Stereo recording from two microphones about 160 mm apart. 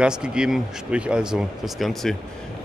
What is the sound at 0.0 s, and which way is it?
Speech, 5° right (ahead or behind).